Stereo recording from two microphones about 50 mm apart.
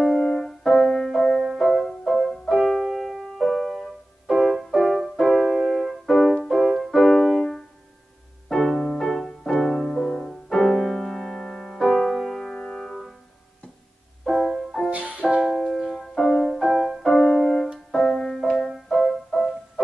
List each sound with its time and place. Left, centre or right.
0.0 s music: centre
0.3 s music: centre
1.4 s music: centre
14.2 s music: centre
14.9 s music: right
15.4 s keyboard: centre
16.5 s music: centre